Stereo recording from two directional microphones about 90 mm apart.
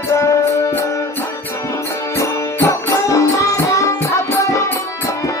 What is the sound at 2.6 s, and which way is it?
Music, 35° left (ahead or behind).